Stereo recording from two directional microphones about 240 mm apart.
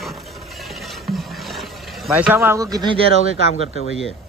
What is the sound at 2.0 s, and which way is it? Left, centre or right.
Speech, centre.